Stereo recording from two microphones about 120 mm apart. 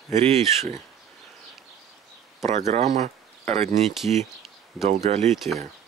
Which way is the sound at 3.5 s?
65° right (ahead or behind).